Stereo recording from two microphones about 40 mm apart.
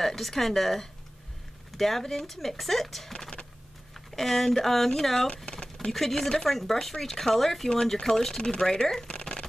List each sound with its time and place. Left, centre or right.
0.0 s speech: centre
5.4 s a sound: centre
5.9 s speech: centre
8.4 s speech: left